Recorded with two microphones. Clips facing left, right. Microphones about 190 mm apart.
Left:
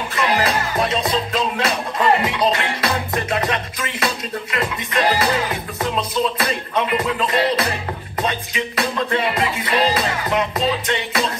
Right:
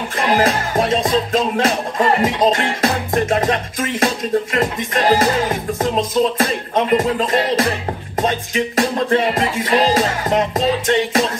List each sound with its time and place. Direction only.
0.1 s music: 50° right (ahead or behind)